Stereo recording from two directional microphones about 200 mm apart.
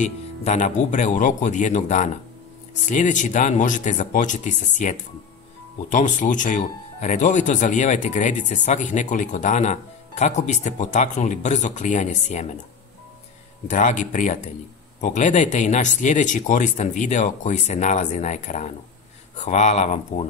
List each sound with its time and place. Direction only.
0.0 s speech: 35° left (ahead or behind)
13.7 s speech: 40° left (ahead or behind)